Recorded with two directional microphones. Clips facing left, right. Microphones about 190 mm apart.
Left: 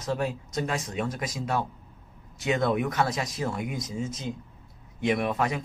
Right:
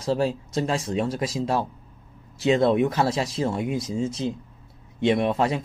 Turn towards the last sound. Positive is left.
turn(degrees=-30)  # may be behind; listen again after turning